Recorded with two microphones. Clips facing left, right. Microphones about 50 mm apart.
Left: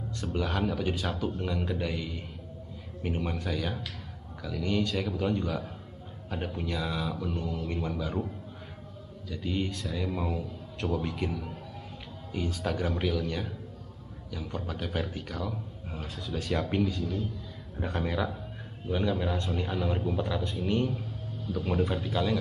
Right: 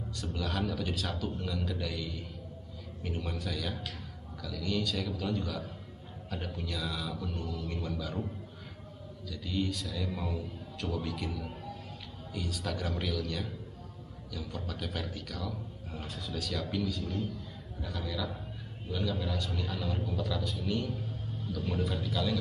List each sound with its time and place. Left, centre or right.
0.2 s a man's voice: left
9.3 s a man's voice: left
16.3 s speech: left
17.7 s a man's voice: left
18.9 s a man's voice: left